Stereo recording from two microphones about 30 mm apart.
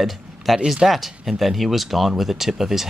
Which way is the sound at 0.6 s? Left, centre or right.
Centre.